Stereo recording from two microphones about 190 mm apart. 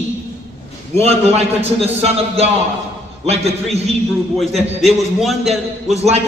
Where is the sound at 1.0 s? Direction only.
35° right (ahead or behind).